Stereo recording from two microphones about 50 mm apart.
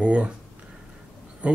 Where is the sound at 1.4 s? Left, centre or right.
Right.